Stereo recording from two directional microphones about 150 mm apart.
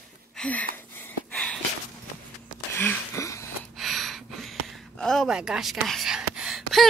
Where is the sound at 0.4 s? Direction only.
10° left (ahead or behind).